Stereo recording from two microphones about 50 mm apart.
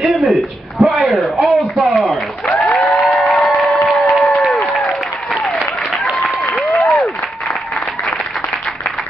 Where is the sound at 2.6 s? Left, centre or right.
Centre.